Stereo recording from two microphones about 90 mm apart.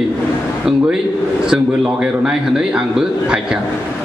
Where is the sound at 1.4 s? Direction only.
10° right (ahead or behind).